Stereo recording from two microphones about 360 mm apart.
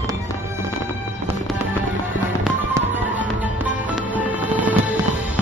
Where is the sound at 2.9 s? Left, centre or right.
Centre.